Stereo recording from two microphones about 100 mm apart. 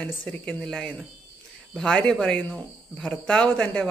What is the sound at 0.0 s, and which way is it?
Speech, 10° left (ahead or behind).